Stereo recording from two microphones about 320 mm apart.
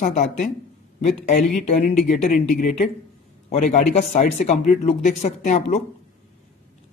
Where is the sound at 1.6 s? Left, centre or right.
Left.